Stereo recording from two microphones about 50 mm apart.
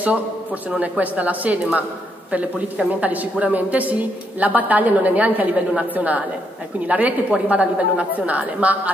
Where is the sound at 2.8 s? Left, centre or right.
Right.